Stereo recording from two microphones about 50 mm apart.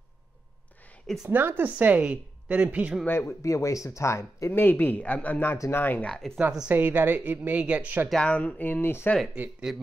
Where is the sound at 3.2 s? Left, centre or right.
Left.